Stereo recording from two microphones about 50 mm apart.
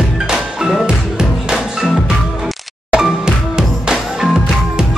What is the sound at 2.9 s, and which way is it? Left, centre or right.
Music, centre.